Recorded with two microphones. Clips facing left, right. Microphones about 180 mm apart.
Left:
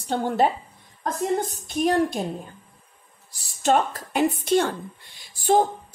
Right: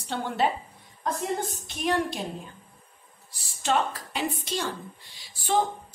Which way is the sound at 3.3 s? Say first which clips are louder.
Left 6 dB; 45° left (ahead or behind).